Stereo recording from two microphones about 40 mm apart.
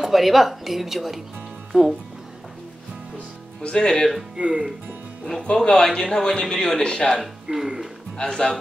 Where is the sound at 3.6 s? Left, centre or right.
Left.